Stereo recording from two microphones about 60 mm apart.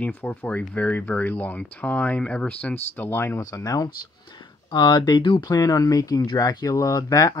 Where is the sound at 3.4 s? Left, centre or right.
Left.